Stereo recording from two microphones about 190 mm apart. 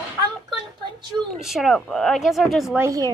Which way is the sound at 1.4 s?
Centre (ahead or behind).